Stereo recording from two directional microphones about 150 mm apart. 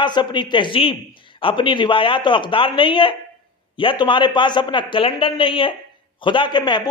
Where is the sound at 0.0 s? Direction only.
30° left (ahead or behind).